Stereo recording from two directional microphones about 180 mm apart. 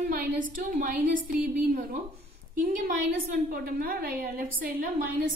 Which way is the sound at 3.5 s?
55° right (ahead or behind).